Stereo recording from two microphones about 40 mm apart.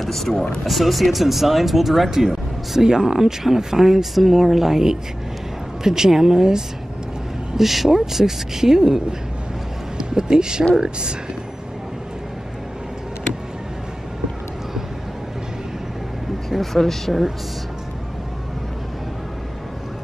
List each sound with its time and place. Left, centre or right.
0.0 s speech: centre; by 11.1 s right
16.7 s speech: centre